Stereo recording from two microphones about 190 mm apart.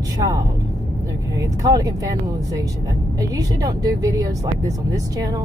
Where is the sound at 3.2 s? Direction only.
20° right (ahead or behind).